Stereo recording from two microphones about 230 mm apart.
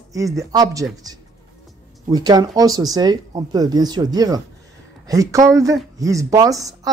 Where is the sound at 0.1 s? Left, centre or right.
Centre.